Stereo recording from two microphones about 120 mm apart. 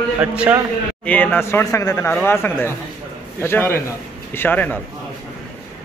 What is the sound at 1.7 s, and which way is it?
A man's voice, 30° left (ahead or behind).